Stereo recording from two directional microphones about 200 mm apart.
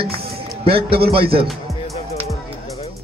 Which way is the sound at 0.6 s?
30° right (ahead or behind).